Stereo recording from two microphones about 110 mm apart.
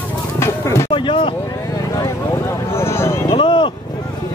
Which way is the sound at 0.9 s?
50° left (ahead or behind).